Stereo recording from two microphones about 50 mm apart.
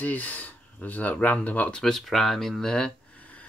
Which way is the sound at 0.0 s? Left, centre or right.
Left.